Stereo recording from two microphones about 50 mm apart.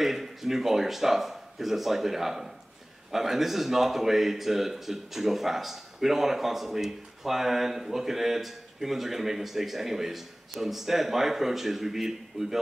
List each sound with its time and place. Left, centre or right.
0.0 s speech: centre